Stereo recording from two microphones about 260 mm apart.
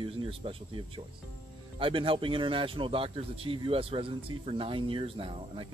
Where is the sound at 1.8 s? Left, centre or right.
Centre.